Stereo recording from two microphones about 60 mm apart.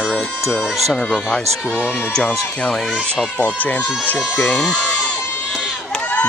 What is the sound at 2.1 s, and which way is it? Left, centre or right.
Speech, centre.